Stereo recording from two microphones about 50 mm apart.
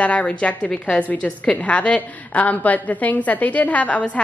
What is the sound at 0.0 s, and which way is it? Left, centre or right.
A woman's voice, left.